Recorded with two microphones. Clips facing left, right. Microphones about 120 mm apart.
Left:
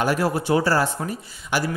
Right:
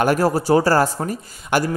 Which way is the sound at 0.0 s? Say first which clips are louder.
Right 4 dB; 45° right (ahead or behind).